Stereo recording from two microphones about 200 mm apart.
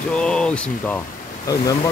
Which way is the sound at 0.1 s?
5° left (ahead or behind).